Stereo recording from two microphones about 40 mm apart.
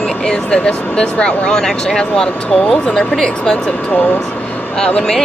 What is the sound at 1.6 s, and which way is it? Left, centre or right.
Speech, centre.